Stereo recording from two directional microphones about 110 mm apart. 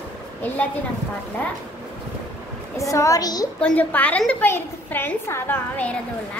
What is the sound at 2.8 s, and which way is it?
Speech, 30° left (ahead or behind).